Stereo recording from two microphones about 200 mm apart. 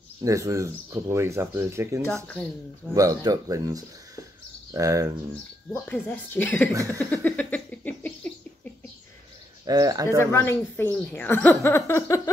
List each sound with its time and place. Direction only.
0.2 s speech: 15° right (ahead or behind)
5.7 s speech: 5° left (ahead or behind)
7.1 s a sound: 10° left (ahead or behind)
9.7 s speech: 20° right (ahead or behind)
10.0 s speech: 15° left (ahead or behind)